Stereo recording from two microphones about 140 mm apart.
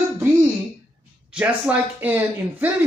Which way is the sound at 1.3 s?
10° right (ahead or behind).